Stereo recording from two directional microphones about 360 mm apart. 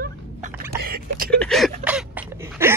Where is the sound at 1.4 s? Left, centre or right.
Centre.